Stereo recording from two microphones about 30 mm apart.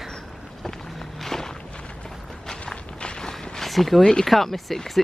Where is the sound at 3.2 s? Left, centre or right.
Centre.